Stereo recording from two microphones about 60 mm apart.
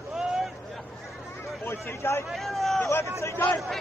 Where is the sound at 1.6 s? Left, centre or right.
Left.